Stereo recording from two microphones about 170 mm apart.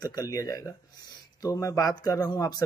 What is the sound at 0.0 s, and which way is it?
Speech, 25° left (ahead or behind).